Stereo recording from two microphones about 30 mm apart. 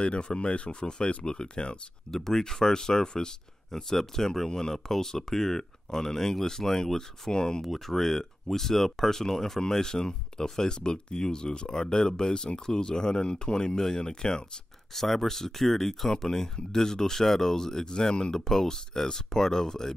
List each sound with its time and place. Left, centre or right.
0.0 s speech: left
2.0 s speech: centre
3.7 s speech: centre
7.6 s speech: centre; by 14.4 s left
15.0 s speech: centre